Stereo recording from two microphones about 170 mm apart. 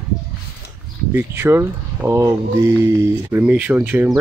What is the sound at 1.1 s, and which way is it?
Speech, 15° right (ahead or behind).